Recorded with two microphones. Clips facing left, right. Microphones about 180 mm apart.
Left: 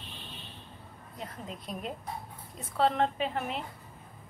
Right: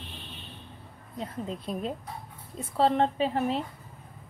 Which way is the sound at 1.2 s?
30° right (ahead or behind).